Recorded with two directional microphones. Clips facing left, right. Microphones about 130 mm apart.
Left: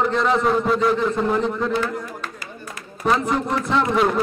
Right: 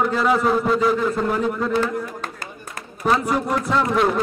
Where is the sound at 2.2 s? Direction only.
45° right (ahead or behind).